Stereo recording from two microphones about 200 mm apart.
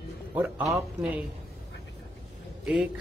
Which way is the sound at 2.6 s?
5° right (ahead or behind).